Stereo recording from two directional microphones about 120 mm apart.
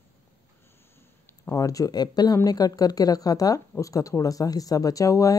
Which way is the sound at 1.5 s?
30° left (ahead or behind).